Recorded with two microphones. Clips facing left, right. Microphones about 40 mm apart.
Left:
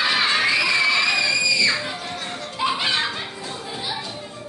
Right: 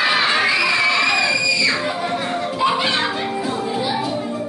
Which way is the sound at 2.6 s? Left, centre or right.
Centre.